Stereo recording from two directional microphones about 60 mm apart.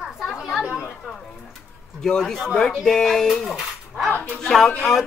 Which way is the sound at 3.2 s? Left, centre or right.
Centre.